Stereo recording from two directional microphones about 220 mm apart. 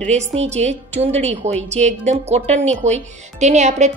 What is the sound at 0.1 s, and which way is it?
A woman's voice, 30° right (ahead or behind).